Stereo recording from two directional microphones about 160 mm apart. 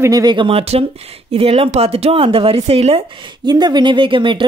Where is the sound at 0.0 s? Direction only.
25° right (ahead or behind).